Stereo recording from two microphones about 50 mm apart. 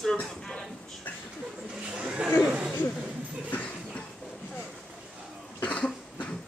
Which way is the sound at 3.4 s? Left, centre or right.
Left.